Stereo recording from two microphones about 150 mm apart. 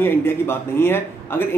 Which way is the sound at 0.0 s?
15° left (ahead or behind).